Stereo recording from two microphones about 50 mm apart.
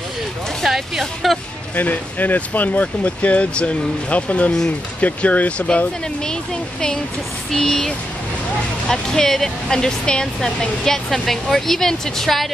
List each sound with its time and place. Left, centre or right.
0.7 s speech: centre
1.8 s speech: left
4.5 s speech: centre
5.0 s speech: left
7.5 s speech: centre